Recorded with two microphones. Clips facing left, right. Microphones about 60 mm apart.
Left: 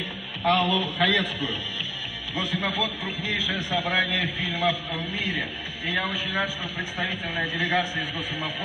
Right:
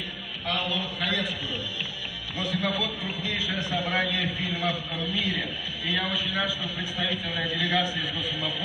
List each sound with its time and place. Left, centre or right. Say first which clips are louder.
0.5 s a man's voice: left 7 dB; left